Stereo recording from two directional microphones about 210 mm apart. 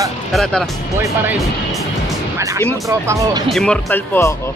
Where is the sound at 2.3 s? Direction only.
15° right (ahead or behind).